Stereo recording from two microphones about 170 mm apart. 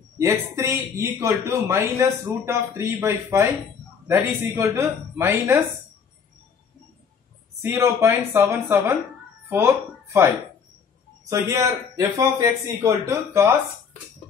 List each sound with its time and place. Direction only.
0.2 s speech: 15° right (ahead or behind)
7.6 s speech: 15° right (ahead or behind)